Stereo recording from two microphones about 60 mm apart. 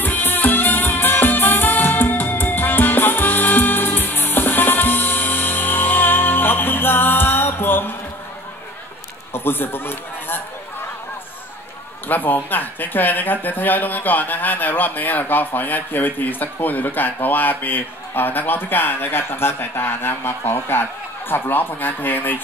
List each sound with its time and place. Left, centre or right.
0.0 s music: left
9.3 s a man's voice: left
12.1 s speech: left